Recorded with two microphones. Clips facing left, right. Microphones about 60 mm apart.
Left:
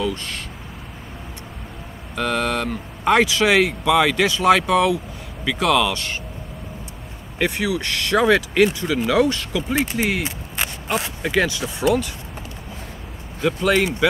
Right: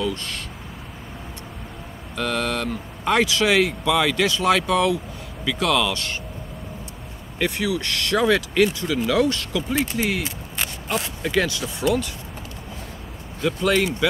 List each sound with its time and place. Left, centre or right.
0.0 s a sound: centre
2.1 s speech: centre
7.3 s speech: left
13.4 s speech: left